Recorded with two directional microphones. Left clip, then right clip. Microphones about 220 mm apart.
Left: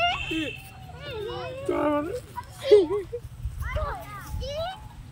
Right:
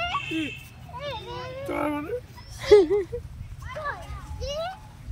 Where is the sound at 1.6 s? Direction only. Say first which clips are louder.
Left 3 dB; 10° right (ahead or behind).